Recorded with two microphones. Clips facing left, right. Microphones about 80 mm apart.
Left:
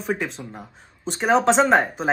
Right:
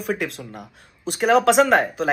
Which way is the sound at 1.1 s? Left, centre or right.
Left.